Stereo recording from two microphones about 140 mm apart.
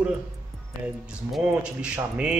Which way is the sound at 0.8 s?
5° right (ahead or behind).